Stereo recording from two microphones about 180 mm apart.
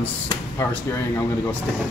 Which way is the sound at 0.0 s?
15° left (ahead or behind).